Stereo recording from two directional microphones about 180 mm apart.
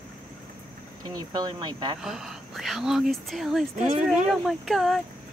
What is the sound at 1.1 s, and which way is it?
Speech, 20° right (ahead or behind).